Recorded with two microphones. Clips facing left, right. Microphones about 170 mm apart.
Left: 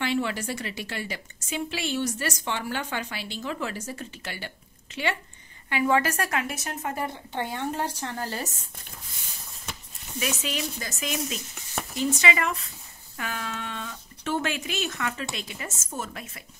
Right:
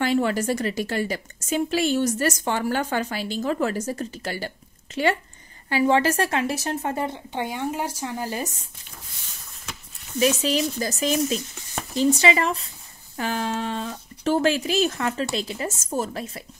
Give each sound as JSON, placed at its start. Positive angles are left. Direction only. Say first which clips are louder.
{"t": 0.0, "sound": "a woman's voice", "louder": "right 6 dB", "side_deg": -45}
{"t": 5.7, "sound": "a woman's voice", "louder": "right 4 dB", "side_deg": -30}
{"t": 10.1, "sound": "speech", "louder": "right 9 dB", "side_deg": -35}